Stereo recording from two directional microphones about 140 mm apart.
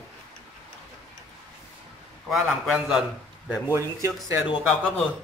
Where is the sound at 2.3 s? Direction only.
Centre (ahead or behind).